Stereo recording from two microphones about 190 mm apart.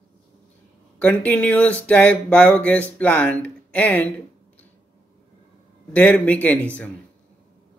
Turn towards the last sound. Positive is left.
turn(degrees=10)  # may be behind; listen again after turning